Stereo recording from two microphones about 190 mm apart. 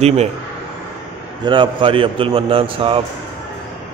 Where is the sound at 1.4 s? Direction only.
25° right (ahead or behind).